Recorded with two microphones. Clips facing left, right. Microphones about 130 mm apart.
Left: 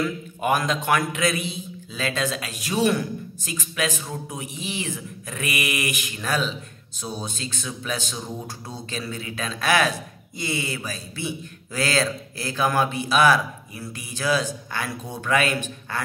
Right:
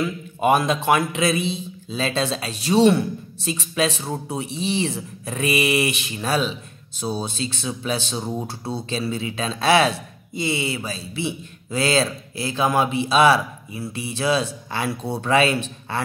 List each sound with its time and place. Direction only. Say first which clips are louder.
0.0 s speech: right 4 dB; 25° right (ahead or behind)